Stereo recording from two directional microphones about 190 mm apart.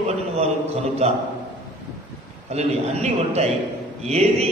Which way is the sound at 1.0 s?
35° right (ahead or behind).